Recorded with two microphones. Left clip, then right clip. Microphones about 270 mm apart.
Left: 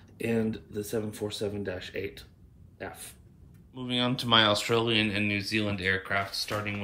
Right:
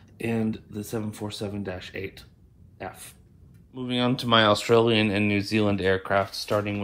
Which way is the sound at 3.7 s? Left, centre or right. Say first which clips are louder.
Right 3 dB; centre.